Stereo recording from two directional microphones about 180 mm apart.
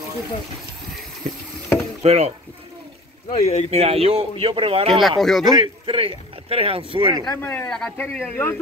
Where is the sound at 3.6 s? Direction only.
35° right (ahead or behind).